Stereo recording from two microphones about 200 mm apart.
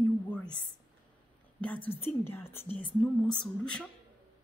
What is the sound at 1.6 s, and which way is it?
A woman's voice, 5° left (ahead or behind).